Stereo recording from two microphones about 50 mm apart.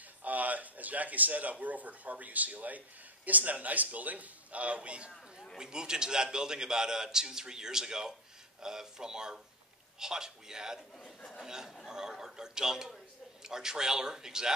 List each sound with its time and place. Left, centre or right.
0.2 s a man's voice: right
5.1 s chatter: centre
5.6 s a man's voice: centre